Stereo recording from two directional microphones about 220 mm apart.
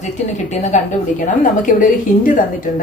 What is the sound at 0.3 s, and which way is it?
A woman's voice, 30° left (ahead or behind).